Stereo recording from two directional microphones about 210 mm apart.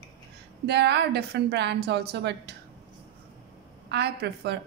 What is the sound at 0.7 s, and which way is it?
A woman's voice, 55° right (ahead or behind).